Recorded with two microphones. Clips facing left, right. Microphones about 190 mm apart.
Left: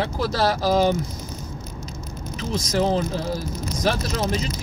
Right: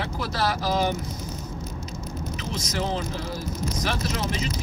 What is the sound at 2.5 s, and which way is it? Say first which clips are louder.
Speech: left 8 dB; 35° left (ahead or behind).